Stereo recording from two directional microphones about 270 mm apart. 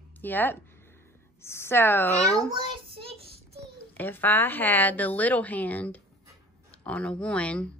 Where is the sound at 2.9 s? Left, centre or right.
Centre.